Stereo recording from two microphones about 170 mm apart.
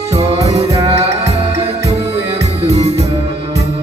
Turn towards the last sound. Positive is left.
turn(degrees=-40)  # may be behind; listen again after turning